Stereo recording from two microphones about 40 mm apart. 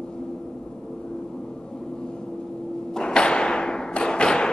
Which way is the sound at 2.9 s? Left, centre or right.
Left.